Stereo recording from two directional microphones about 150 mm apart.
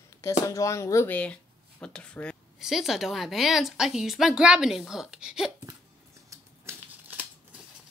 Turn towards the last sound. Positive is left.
turn(degrees=-10)  # may be behind; listen again after turning